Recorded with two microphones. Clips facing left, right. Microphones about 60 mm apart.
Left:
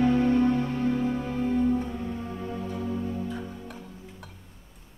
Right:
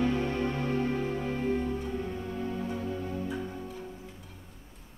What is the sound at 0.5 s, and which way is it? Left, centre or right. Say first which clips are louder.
Music: left 3 dB; right.